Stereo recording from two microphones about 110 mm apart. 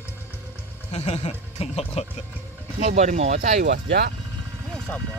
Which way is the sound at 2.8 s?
85° right.